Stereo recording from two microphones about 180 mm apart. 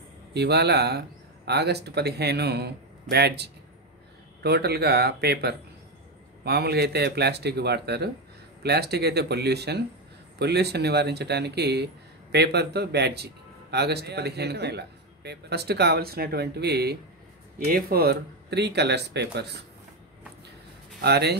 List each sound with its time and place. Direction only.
0.3 s speech: 65° right (ahead or behind)
21.0 s speech: 65° right (ahead or behind)